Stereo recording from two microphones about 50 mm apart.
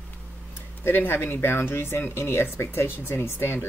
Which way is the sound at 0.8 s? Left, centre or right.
Left.